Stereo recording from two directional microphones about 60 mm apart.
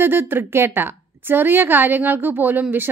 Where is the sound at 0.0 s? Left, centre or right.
Right.